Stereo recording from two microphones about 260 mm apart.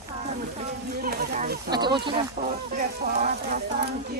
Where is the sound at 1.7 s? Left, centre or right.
Centre.